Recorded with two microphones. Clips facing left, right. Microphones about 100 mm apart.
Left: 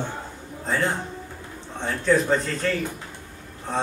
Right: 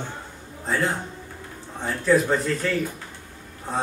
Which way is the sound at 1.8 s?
5° right (ahead or behind).